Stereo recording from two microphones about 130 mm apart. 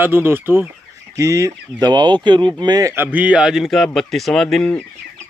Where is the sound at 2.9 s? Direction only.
15° right (ahead or behind); by 4.7 s 5° left (ahead or behind).